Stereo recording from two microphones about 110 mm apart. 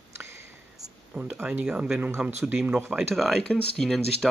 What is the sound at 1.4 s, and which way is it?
Speech, 10° right (ahead or behind).